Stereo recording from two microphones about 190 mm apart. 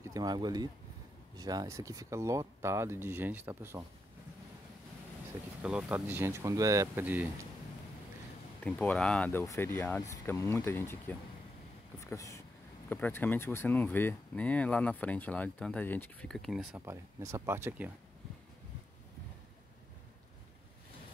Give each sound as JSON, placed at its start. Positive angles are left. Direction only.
{"t": 0.0, "sound": "speech", "side_deg": -20}
{"t": 5.6, "sound": "speech", "side_deg": -5}
{"t": 8.6, "sound": "speech", "side_deg": 5}
{"t": 16.7, "sound": "speech", "side_deg": -15}